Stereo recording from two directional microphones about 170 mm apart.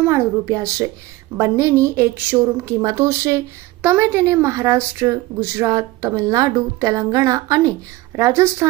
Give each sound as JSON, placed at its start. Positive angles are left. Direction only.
{"t": 0.0, "sound": "speech", "side_deg": -15}